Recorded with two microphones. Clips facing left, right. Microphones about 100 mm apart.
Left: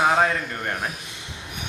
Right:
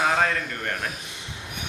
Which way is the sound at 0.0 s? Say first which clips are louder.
Left 3 dB; 20° left (ahead or behind).